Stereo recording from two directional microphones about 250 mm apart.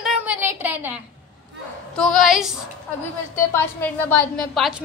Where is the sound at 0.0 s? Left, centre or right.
Centre.